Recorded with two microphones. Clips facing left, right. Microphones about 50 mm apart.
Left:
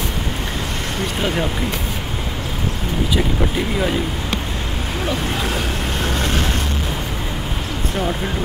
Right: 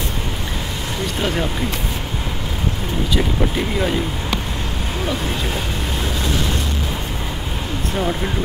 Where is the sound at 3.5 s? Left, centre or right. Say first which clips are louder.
Even; centre.